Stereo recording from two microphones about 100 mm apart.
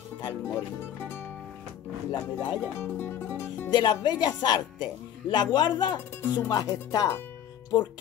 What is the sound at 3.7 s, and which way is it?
Speech, 45° left (ahead or behind).